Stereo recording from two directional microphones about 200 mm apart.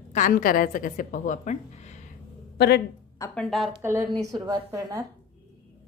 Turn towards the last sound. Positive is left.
turn(degrees=-15)  # may be behind; listen again after turning